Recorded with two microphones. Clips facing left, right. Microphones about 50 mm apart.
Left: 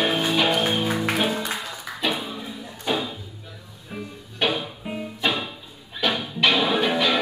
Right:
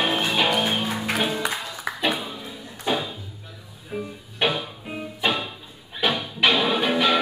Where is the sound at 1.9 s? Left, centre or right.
Right.